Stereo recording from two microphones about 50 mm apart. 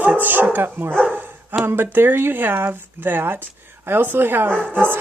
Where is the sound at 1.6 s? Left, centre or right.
Right.